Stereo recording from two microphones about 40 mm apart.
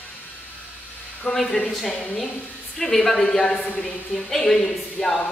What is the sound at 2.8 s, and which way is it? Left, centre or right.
A woman's voice, centre.